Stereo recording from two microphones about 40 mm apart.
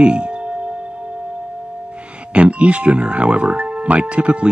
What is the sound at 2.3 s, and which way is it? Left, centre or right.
Speech, right.